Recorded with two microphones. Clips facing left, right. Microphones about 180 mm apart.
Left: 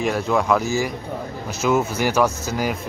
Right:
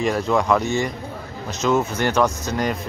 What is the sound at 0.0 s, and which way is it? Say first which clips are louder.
Speech: right 1 dB; centre (ahead or behind).